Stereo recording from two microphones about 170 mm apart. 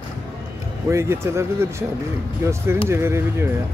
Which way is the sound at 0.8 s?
15° right (ahead or behind).